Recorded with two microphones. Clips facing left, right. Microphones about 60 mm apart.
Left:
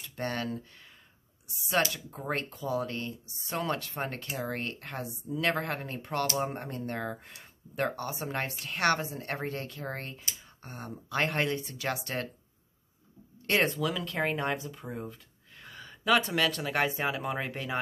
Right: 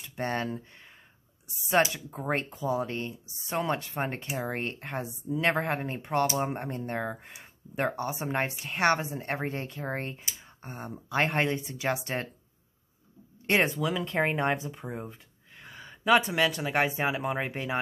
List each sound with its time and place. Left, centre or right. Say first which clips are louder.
0.1 s speech: right 2 dB; right
13.5 s speech: right 2 dB; right